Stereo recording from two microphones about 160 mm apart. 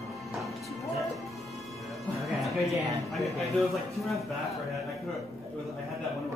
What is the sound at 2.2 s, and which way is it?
Music, centre (ahead or behind).